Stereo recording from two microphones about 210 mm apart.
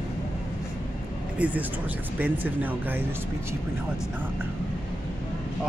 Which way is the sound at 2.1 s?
10° right (ahead or behind).